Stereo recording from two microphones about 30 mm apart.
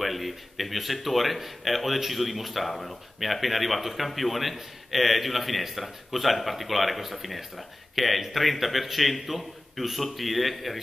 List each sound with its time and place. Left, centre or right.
0.0 s a man's voice: centre
2.7 s a man's voice: centre